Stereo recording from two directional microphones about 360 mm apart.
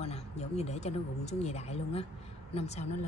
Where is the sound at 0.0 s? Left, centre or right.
Centre.